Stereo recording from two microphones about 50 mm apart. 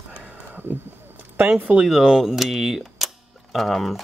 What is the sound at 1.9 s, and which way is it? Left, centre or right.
Speech, centre.